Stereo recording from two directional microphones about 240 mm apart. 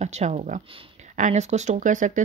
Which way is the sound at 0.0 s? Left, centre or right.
Right.